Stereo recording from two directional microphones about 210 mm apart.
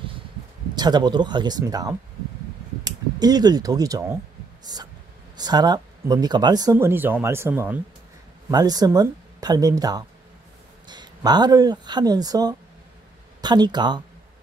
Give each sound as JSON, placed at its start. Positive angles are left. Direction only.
{"t": 0.7, "sound": "speech", "side_deg": -20}
{"t": 5.4, "sound": "speech", "side_deg": -20}